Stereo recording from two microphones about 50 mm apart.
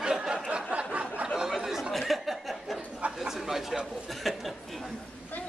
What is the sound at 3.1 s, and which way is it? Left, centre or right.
Speech, centre.